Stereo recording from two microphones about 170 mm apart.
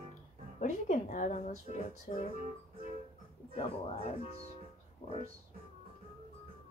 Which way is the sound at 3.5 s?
35° left (ahead or behind).